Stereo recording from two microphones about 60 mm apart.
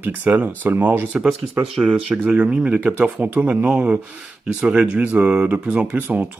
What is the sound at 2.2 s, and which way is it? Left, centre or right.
Speech, right.